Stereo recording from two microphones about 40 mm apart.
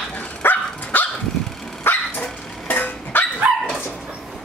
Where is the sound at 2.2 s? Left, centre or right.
Left.